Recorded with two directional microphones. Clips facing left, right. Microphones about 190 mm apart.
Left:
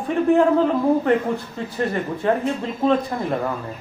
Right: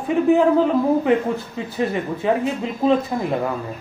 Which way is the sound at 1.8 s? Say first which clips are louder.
Right 1 dB; 5° right (ahead or behind).